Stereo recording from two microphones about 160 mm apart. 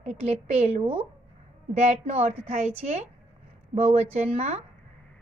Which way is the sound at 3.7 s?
40° right (ahead or behind).